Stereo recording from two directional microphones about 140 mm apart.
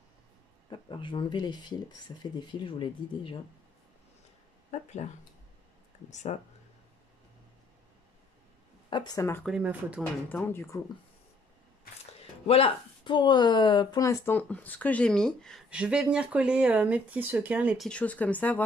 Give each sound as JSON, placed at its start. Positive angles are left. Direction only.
{"t": 0.7, "sound": "speech", "side_deg": 35}
{"t": 4.6, "sound": "speech", "side_deg": 55}
{"t": 8.9, "sound": "speech", "side_deg": 25}
{"t": 9.6, "sound": "speech", "side_deg": -10}
{"t": 10.0, "sound": "speech", "side_deg": 10}
{"t": 12.4, "sound": "speech", "side_deg": 45}
{"t": 15.7, "sound": "speech", "side_deg": -5}
{"t": 17.7, "sound": "speech", "side_deg": 5}